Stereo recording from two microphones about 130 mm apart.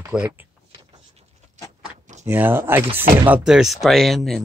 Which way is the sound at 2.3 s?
15° right (ahead or behind).